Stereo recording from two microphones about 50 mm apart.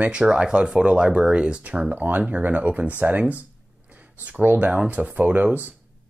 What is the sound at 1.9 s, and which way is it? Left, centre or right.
Speech, right.